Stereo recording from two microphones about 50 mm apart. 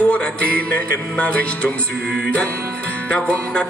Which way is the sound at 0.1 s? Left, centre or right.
Left.